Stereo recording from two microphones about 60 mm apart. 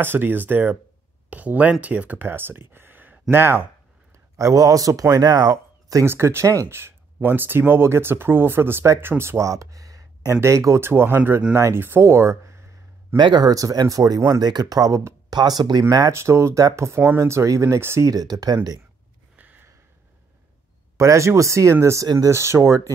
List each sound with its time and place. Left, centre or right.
0.0 s speech: right
4.4 s speech: right
6.0 s speech: right
8.8 s speech: right
9.4 s a sound: right
10.3 s speech: right
10.8 s speech: right
13.5 s speech: right
16.1 s speech: right
18.0 s speech: right
19.3 s gasp: right
21.0 s speech: right
22.0 s speech: right
22.3 s speech: right